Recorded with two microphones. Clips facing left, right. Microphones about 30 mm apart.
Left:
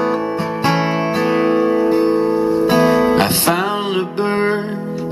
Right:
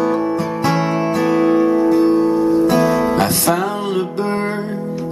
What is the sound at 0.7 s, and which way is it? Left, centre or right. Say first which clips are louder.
Music: left 1 dB; left.